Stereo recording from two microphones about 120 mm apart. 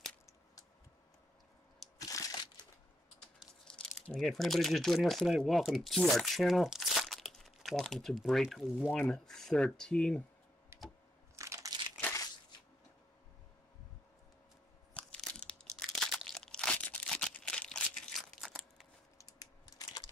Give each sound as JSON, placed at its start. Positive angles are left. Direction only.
{"t": 2.0, "sound": "crushing", "side_deg": 30}
{"t": 3.3, "sound": "speech", "side_deg": 5}
{"t": 10.7, "sound": "computer keyboard", "side_deg": -20}
{"t": 11.3, "sound": "crushing", "side_deg": -25}
{"t": 12.0, "sound": "a sound", "side_deg": 25}
{"t": 15.0, "sound": "crunch", "side_deg": 10}
{"t": 18.5, "sound": "crumpling", "side_deg": -5}
{"t": 19.1, "sound": "typing", "side_deg": 30}